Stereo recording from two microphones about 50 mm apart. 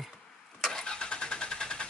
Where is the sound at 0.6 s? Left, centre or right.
Centre.